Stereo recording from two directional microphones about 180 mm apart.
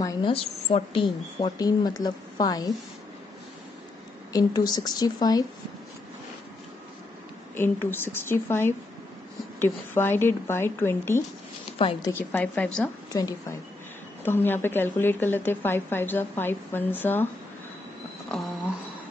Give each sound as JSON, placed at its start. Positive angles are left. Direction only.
{"t": 0.0, "sound": "a sound", "side_deg": 20}
{"t": 0.3, "sound": "speech", "side_deg": 35}
{"t": 4.3, "sound": "speech", "side_deg": 20}
{"t": 7.5, "sound": "a woman's voice", "side_deg": 10}
{"t": 11.8, "sound": "speech", "side_deg": 30}
{"t": 12.1, "sound": "a woman's voice", "side_deg": 10}
{"t": 13.1, "sound": "a woman's voice", "side_deg": 20}